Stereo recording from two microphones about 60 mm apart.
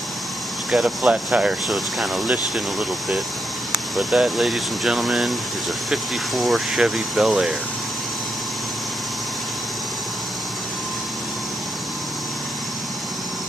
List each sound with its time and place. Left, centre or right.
0.7 s speech: centre
1.0 s speech: centre
1.7 s speech: centre
3.7 s speech: centre